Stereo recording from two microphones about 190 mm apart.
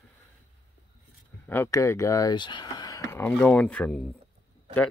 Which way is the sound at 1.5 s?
15° left (ahead or behind).